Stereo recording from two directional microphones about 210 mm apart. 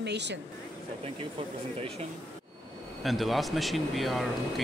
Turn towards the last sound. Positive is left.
turn(degrees=0)  # may be behind; listen again after turning